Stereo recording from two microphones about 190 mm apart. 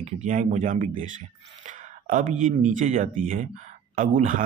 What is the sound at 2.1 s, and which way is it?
A man's voice, 40° right (ahead or behind).